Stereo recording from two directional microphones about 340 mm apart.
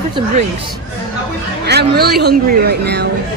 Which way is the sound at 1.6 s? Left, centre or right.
Right.